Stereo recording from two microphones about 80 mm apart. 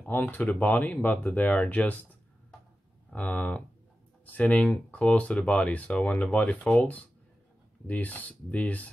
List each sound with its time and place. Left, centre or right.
0.1 s speech: left
3.2 s speech: centre